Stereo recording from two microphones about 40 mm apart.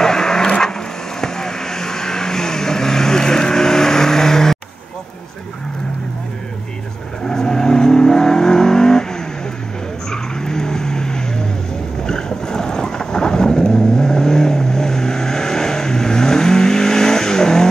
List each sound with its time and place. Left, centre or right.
0.0 s vehicle: centre
0.5 s wood: centre
1.2 s vehicle: centre
7.2 s vehicle: centre
10.1 s vehicle: centre